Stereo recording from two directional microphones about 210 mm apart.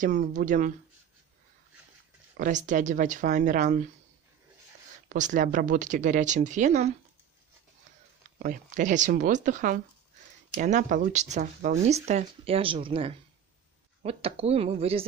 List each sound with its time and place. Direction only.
0.0 s speech: 35° right (ahead or behind)
2.3 s speech: 40° right (ahead or behind)
5.1 s speech: 35° right (ahead or behind)
8.4 s speech: 40° right (ahead or behind)